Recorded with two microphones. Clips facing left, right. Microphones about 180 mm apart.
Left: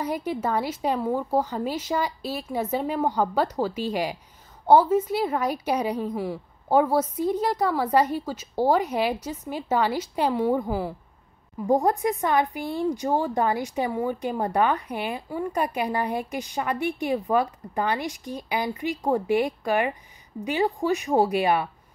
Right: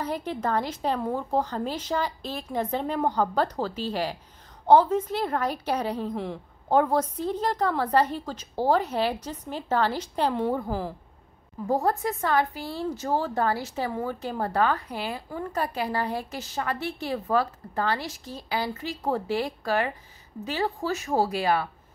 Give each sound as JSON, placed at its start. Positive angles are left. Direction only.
{"t": 0.0, "sound": "speech", "side_deg": 10}